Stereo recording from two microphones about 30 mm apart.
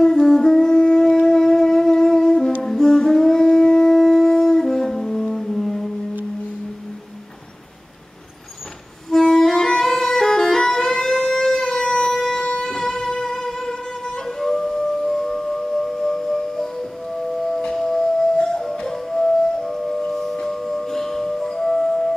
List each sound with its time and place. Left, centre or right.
0.0 s wind instrument: centre
2.6 s music: centre
3.6 s shofar: centre
4.0 s music: centre
9.2 s music: centre
12.6 s music: centre
17.7 s music: centre